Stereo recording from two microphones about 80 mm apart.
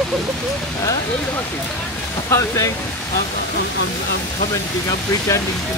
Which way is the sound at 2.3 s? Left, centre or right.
Left.